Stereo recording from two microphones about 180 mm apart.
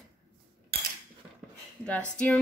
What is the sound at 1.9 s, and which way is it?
Speech, 5° left (ahead or behind).